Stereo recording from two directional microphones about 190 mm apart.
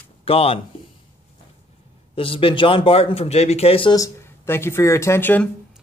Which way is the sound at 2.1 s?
30° left (ahead or behind).